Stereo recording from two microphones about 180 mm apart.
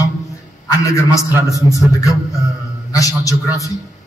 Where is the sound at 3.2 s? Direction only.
20° left (ahead or behind).